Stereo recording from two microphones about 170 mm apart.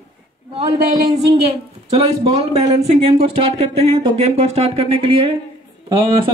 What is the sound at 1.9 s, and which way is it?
Speech, 35° right (ahead or behind).